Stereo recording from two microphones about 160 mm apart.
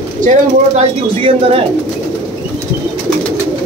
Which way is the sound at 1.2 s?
35° right (ahead or behind).